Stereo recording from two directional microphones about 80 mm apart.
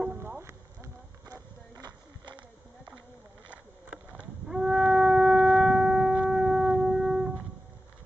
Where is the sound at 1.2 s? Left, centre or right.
Right.